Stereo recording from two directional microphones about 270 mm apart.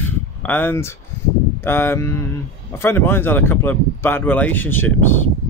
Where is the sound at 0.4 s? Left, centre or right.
Centre.